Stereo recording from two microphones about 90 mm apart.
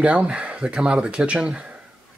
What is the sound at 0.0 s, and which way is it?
Speech, 15° right (ahead or behind).